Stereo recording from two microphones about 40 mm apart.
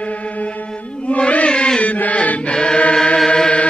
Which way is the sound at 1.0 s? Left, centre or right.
Left.